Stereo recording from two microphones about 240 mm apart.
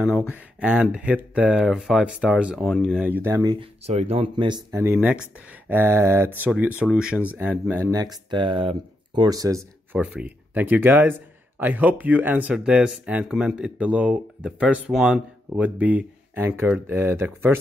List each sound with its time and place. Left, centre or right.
0.3 s speech: centre